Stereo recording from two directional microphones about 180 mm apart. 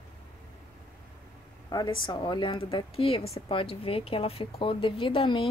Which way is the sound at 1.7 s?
25° left (ahead or behind).